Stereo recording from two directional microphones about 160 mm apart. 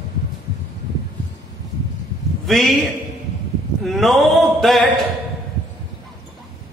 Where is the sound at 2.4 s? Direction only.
Centre (ahead or behind).